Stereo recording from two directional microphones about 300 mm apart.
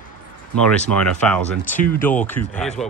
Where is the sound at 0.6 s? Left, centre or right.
Centre.